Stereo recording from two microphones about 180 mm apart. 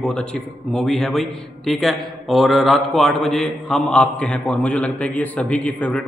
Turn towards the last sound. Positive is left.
turn(degrees=10)  # may be behind; listen again after turning